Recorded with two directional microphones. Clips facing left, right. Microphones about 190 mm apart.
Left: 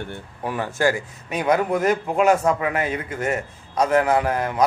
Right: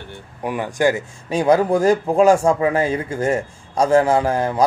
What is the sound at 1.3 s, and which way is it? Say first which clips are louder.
Speech: right 5 dB; 30° right (ahead or behind).